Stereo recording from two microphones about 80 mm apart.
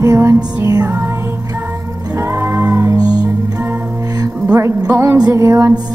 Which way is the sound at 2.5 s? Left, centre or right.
Right.